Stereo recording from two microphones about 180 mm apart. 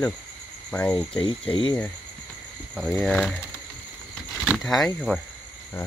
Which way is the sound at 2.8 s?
Centre (ahead or behind).